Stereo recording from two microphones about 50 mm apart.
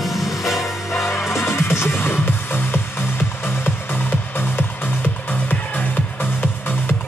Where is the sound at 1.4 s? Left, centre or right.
Left.